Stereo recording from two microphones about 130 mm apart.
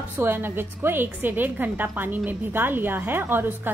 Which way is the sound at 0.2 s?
15° right (ahead or behind).